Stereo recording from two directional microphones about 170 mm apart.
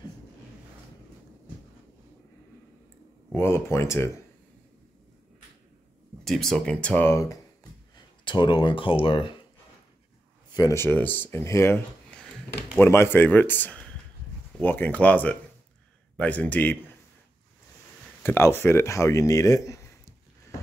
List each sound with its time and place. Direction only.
3.3 s a man's voice: 15° left (ahead or behind)
6.2 s a man's voice: centre (ahead or behind)
8.3 s speech: 30° left (ahead or behind)
10.5 s a man's voice: 20° left (ahead or behind)
18.2 s speech: 15° left (ahead or behind)